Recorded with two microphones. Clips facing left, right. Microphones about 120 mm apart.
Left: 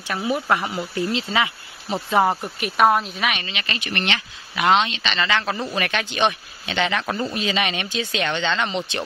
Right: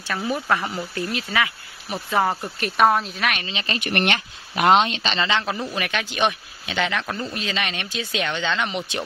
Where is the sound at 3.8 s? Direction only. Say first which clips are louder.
Right 4 dB; 50° right (ahead or behind).